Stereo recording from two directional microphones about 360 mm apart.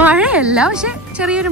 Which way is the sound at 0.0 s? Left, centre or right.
Centre.